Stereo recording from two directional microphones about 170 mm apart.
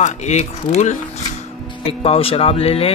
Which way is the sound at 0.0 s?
45° left (ahead or behind).